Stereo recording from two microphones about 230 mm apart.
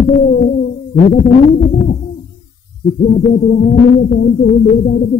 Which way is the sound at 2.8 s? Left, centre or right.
Left.